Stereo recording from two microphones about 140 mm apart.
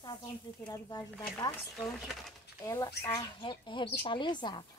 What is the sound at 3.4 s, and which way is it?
A woman's voice, 35° left (ahead or behind).